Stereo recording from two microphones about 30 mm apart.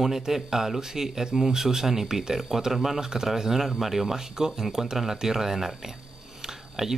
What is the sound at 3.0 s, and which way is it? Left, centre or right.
Speech, right.